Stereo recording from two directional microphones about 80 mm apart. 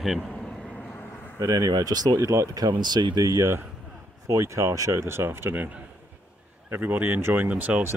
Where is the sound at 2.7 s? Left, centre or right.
Right.